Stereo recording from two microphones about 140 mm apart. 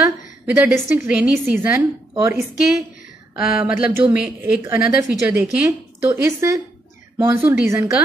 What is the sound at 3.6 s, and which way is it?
Speech, 10° right (ahead or behind).